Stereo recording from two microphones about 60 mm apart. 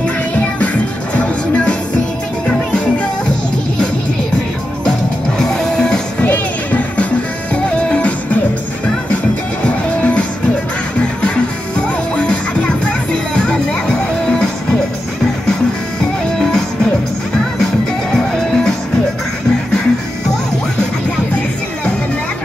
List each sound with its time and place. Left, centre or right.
1.1 s music: centre
5.4 s music: centre
6.2 s music: left
11.2 s music: centre
18.1 s music: centre